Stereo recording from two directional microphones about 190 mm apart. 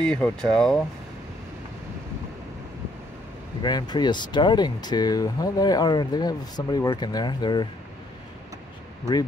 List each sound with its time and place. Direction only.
0.0 s speech: 5° left (ahead or behind)
3.6 s speech: 20° left (ahead or behind)